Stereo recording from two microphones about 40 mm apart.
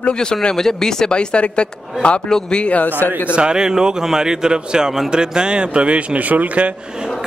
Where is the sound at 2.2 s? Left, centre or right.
Centre.